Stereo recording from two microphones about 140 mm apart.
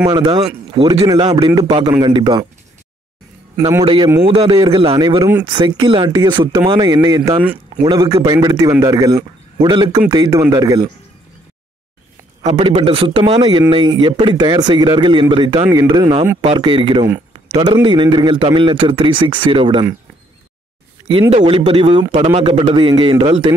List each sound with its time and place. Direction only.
0.0 s speech: 30° right (ahead or behind)
3.5 s a man's voice: 20° right (ahead or behind)
3.8 s speech: 35° right (ahead or behind)
5.0 s speech: 30° right (ahead or behind)
7.8 s speech: 40° right (ahead or behind)
12.6 s speech: 35° right (ahead or behind)
21.1 s speech: 40° right (ahead or behind)